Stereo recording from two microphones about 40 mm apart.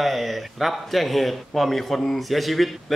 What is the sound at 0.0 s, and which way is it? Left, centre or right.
Speech, centre.